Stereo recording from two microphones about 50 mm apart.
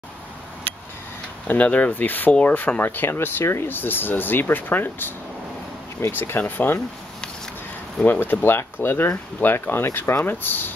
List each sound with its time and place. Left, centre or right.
1.5 s speech: left
2.8 s speech: left
3.7 s speech: left
6.1 s speech: left
8.0 s speech: left